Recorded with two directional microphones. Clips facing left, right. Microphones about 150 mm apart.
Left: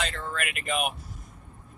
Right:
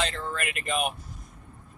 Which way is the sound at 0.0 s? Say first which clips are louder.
Right 2 dB; centre (ahead or behind).